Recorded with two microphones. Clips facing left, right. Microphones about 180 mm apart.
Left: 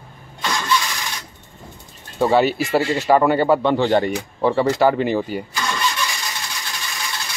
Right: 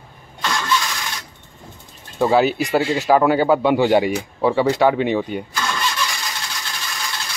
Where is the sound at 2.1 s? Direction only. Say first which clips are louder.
Even; centre (ahead or behind).